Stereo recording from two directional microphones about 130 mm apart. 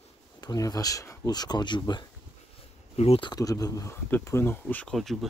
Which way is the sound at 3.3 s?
30° left (ahead or behind).